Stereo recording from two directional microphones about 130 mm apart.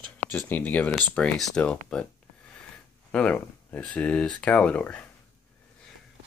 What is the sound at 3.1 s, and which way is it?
Speech, 10° left (ahead or behind).